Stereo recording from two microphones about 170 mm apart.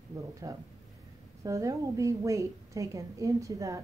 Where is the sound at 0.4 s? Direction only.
20° right (ahead or behind).